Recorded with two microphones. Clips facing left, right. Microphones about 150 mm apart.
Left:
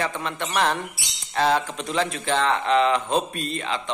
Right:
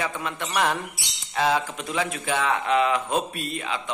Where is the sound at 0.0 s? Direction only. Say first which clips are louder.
Left 2 dB; 10° right (ahead or behind).